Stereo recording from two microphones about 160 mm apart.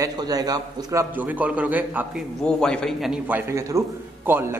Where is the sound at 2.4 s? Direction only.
5° left (ahead or behind).